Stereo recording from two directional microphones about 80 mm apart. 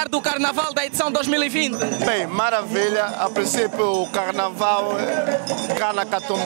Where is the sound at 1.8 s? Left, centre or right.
Right.